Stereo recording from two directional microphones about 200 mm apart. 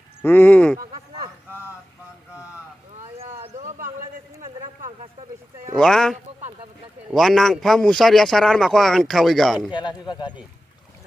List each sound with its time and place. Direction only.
0.2 s speech: 10° left (ahead or behind)
3.4 s a sound: 40° right (ahead or behind)
5.8 s a man's voice: 5° left (ahead or behind)
9.7 s speech: 25° left (ahead or behind)